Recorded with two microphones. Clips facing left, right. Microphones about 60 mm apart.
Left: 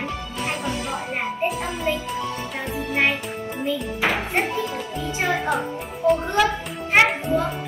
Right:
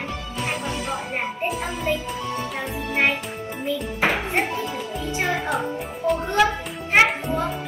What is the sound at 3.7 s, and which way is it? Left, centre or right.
Music, right.